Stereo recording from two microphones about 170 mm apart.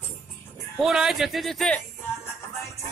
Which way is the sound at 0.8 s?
Centre (ahead or behind).